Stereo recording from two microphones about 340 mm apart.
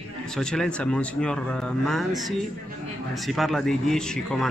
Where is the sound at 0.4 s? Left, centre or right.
Centre.